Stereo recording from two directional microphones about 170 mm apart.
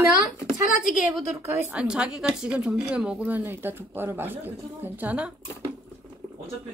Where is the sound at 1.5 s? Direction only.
10° right (ahead or behind).